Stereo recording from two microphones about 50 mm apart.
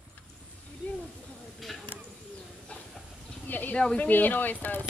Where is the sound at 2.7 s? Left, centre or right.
Left.